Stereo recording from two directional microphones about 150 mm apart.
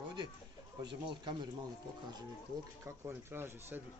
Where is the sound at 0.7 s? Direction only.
30° right (ahead or behind).